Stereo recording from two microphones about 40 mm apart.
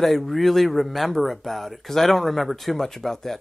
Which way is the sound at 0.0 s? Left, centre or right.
Centre.